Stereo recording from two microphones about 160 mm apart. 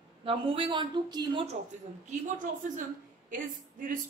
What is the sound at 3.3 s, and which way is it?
Speech, 55° right (ahead or behind).